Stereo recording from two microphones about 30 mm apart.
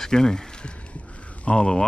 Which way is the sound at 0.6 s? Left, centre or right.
Left.